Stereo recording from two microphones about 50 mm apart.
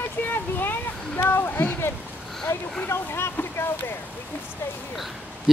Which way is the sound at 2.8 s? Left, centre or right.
Left.